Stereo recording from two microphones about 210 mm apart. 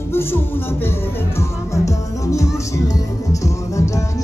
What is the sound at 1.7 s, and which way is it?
Music, 15° left (ahead or behind).